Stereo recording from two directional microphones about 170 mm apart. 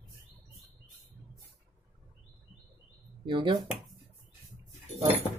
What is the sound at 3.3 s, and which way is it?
Speech, 30° right (ahead or behind).